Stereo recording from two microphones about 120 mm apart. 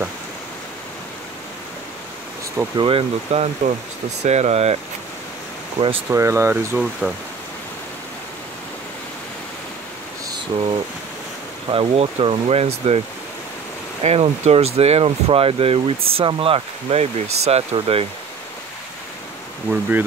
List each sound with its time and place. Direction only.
2.8 s speech: 50° right (ahead or behind); by 4.7 s 65° right (ahead or behind)
6.0 s speech: 25° right (ahead or behind)
10.5 s speech: 50° right (ahead or behind)
11.7 s speech: 50° right (ahead or behind)
14.0 s speech: 60° right (ahead or behind)
19.7 s speech: 15° right (ahead or behind)